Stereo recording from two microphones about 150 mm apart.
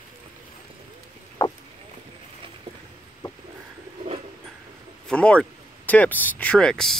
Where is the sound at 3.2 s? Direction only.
30° left (ahead or behind).